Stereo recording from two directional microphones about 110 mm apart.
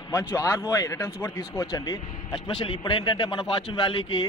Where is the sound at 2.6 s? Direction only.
50° left (ahead or behind).